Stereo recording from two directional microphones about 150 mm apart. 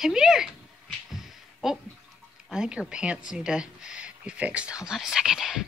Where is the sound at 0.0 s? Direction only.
5° right (ahead or behind).